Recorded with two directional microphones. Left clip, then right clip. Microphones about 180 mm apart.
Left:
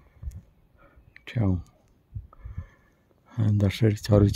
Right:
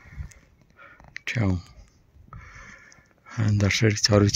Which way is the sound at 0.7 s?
5° left (ahead or behind).